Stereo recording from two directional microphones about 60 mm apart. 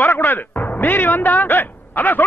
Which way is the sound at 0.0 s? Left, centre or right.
Left.